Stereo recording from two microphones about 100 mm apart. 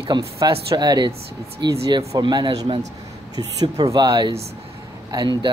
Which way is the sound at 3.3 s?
40° right (ahead or behind).